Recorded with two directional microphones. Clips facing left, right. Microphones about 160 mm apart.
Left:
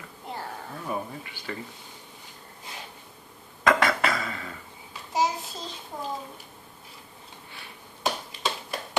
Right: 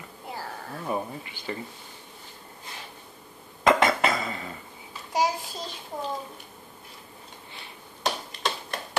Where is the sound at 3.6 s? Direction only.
25° right (ahead or behind).